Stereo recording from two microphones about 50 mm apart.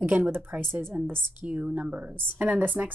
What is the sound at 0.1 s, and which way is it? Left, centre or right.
Speech, right.